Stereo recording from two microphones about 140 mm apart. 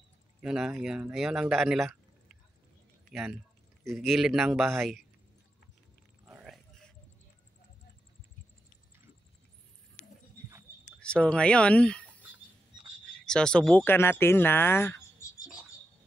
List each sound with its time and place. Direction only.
0.4 s a man's voice: 5° right (ahead or behind)
11.0 s speech: 5° left (ahead or behind)
13.2 s speech: 5° left (ahead or behind)